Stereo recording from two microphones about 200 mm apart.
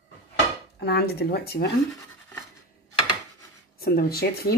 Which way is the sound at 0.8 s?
55° left (ahead or behind).